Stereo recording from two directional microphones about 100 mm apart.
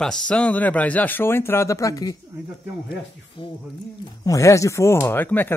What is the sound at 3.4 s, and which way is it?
Speech, 60° left (ahead or behind).